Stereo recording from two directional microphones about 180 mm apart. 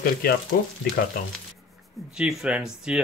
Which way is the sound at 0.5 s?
55° left (ahead or behind).